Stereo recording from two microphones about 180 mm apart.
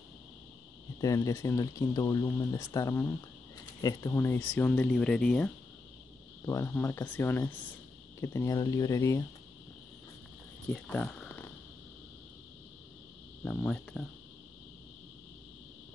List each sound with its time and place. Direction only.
1.0 s speech: 15° left (ahead or behind)
6.4 s speech: 15° left (ahead or behind)
10.7 s speech: 5° left (ahead or behind)
13.4 s speech: 5° left (ahead or behind)